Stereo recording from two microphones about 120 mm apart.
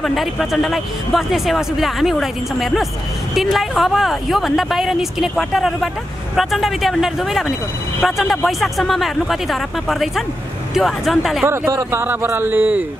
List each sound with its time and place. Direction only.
0.0 s speech: centre (ahead or behind)
11.4 s speech: 25° right (ahead or behind)